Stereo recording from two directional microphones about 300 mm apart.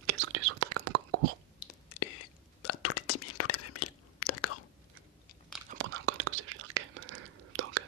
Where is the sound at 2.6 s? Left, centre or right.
Left.